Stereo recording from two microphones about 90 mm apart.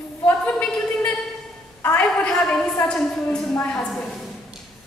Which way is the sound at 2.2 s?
10° left (ahead or behind).